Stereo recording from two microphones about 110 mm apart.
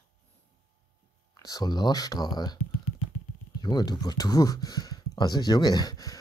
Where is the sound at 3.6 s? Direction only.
35° left (ahead or behind).